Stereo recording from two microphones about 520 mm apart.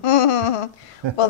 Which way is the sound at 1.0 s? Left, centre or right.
Right.